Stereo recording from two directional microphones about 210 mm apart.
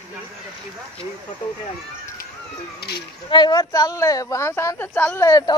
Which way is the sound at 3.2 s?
20° left (ahead or behind).